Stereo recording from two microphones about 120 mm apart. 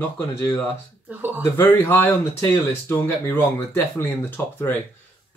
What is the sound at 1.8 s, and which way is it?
Speech, 20° left (ahead or behind).